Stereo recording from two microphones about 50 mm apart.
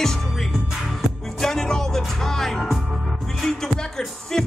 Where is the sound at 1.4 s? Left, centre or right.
Centre.